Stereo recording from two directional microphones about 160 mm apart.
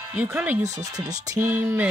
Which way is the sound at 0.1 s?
10° right (ahead or behind).